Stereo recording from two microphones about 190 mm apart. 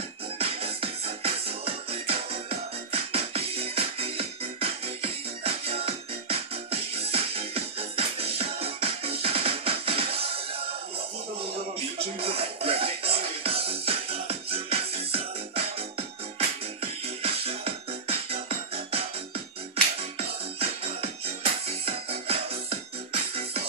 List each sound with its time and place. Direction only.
0.4 s music: 30° right (ahead or behind)
12.2 s music: 30° right (ahead or behind)
20.5 s music: 30° right (ahead or behind)